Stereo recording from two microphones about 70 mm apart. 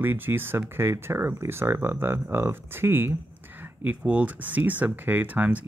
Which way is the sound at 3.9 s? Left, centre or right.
Right.